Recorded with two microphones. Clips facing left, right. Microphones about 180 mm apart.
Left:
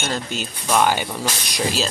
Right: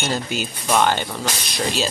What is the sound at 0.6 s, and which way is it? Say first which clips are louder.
Speech: even; 5° left (ahead or behind).